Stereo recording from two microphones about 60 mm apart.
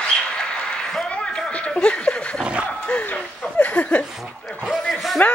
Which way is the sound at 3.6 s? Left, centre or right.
Left.